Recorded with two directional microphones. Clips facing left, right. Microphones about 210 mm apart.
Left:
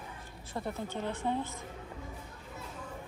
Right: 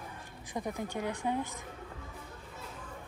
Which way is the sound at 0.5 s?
15° right (ahead or behind).